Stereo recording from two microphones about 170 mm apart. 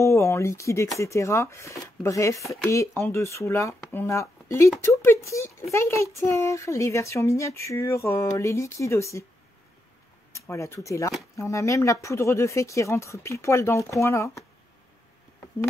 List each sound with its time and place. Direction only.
0.0 s a sound: 15° left (ahead or behind)
0.9 s speech: 15° left (ahead or behind)
10.3 s speech: 15° left (ahead or behind)